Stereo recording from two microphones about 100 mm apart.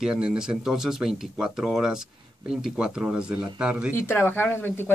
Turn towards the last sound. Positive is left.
turn(degrees=20)  # may be behind; listen again after turning